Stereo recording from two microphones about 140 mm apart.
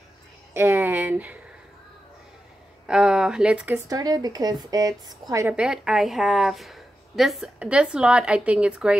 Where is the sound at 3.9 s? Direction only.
25° right (ahead or behind).